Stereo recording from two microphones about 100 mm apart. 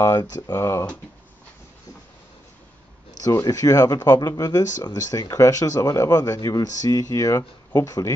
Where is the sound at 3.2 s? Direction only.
40° left (ahead or behind).